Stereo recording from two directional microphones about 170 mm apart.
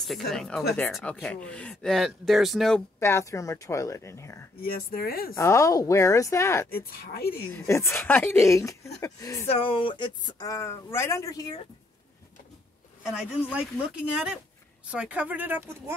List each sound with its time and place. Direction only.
0.3 s speech: centre (ahead or behind)
3.0 s speech: 15° left (ahead or behind)
4.9 s speech: 60° left (ahead or behind)
5.3 s speech: 15° left (ahead or behind)
6.7 s speech: 65° left (ahead or behind)
7.5 s speech: 15° left (ahead or behind)
9.5 s speech: 30° left (ahead or behind)
13.2 s speech: 5° right (ahead or behind)